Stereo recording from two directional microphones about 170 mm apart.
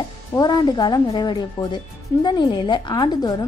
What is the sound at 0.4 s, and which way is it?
A woman's voice, 25° left (ahead or behind).